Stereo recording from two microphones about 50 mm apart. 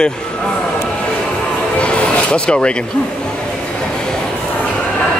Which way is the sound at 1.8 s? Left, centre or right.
Left.